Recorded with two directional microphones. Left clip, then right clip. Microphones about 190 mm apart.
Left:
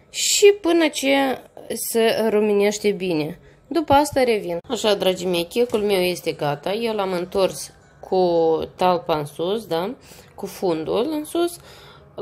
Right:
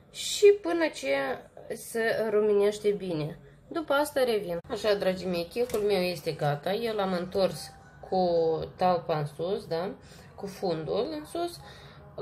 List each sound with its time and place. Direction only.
0.1 s a woman's voice: 35° left (ahead or behind)